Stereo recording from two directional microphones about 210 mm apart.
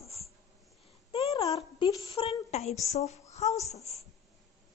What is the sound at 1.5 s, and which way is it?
A woman's voice, 20° left (ahead or behind).